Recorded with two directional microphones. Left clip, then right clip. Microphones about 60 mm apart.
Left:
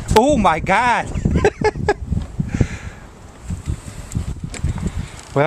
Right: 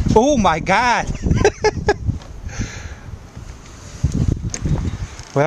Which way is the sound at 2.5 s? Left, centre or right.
Right.